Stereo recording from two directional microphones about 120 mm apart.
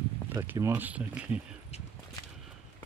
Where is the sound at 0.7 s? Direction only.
15° right (ahead or behind).